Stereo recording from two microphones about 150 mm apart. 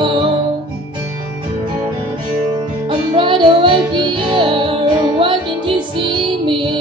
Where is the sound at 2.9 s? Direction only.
35° right (ahead or behind).